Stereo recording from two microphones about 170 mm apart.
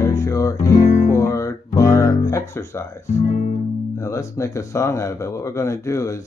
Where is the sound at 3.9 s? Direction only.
15° left (ahead or behind).